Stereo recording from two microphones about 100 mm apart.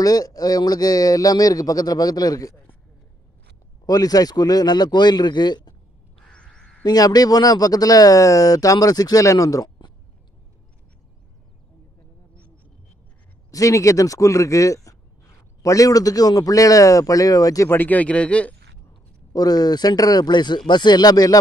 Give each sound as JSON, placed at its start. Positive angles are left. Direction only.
{"t": 0.0, "sound": "speech", "side_deg": 40}
{"t": 3.8, "sound": "speech", "side_deg": 40}
{"t": 6.1, "sound": "crow", "side_deg": 10}
{"t": 6.8, "sound": "speech", "side_deg": 40}
{"t": 13.5, "sound": "speech", "side_deg": 30}
{"t": 17.6, "sound": "a man's voice", "side_deg": 20}
{"t": 19.3, "sound": "speech", "side_deg": 40}